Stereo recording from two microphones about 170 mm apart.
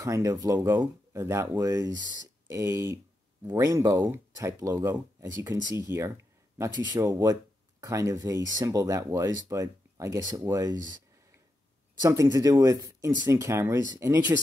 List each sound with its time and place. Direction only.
0.0 s speech: 20° right (ahead or behind)
12.0 s speech: 20° right (ahead or behind)